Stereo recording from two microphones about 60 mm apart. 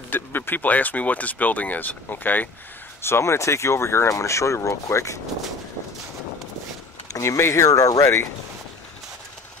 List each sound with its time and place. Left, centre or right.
0.1 s speech: left
3.0 s speech: left
7.1 s speech: left